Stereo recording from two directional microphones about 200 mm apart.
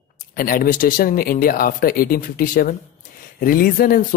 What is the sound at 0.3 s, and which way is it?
Speech, 45° left (ahead or behind).